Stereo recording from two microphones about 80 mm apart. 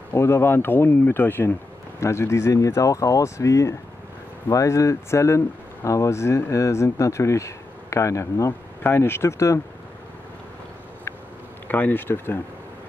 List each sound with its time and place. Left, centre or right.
0.1 s speech: left
11.6 s speech: left